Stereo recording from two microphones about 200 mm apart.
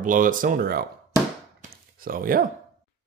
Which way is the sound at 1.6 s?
45° right (ahead or behind).